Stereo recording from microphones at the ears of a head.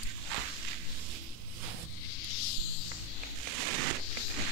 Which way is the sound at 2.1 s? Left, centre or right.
Left.